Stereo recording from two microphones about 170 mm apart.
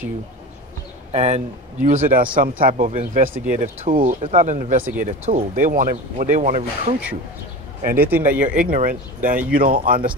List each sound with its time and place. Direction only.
1.1 s speech: 40° right (ahead or behind)
7.8 s speech: 55° right (ahead or behind)
8.1 s speech: 10° right (ahead or behind)
8.6 s speech: 55° right (ahead or behind)